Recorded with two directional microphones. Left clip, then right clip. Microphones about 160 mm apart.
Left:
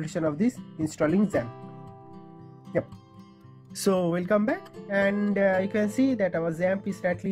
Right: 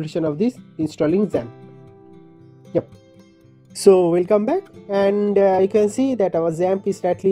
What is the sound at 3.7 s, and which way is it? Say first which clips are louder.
Speech: right 12 dB; 15° right (ahead or behind).